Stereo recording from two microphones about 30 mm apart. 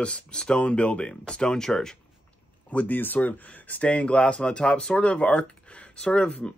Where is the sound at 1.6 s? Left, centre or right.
Centre.